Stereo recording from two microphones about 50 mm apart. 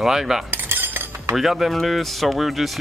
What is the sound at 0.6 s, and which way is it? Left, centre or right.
Cutlery, right.